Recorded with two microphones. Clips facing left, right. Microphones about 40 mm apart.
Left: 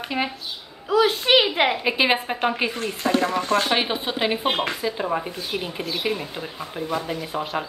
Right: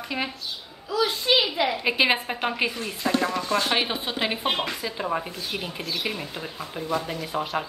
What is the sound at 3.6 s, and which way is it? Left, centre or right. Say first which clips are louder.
Speech: left 2 dB; centre.